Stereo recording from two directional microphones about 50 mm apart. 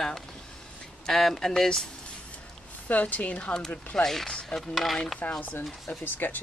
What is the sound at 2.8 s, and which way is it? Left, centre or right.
Speech, left.